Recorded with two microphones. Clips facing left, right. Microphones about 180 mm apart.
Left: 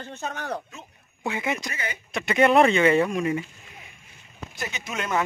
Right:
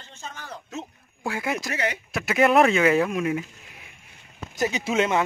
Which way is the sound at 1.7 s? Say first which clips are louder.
Right 6 dB; 70° right (ahead or behind).